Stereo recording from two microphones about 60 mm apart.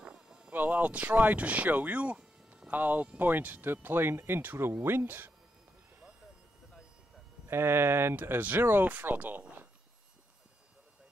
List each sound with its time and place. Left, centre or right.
0.0 s a sound: centre
0.5 s speech: right
7.4 s speech: right